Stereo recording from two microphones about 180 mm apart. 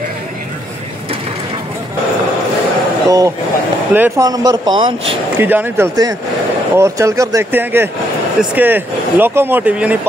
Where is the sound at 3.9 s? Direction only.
15° right (ahead or behind).